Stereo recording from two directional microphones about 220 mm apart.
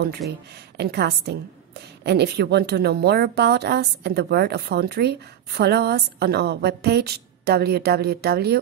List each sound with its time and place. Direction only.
0.7 s a woman's voice: 45° right (ahead or behind)